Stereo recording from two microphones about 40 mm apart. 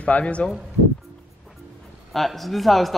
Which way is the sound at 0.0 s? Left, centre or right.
Left.